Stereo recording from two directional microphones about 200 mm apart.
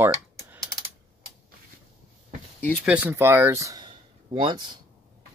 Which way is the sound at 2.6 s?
5° left (ahead or behind).